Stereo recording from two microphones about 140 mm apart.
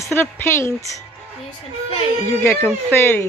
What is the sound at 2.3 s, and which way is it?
Speech, 15° left (ahead or behind).